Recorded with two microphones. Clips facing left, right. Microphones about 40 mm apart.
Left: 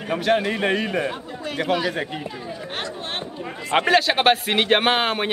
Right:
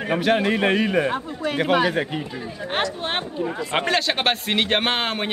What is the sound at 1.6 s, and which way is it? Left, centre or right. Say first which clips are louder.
Speech: right 3 dB; right.